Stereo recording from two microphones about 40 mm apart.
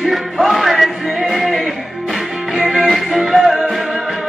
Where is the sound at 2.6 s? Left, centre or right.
Centre.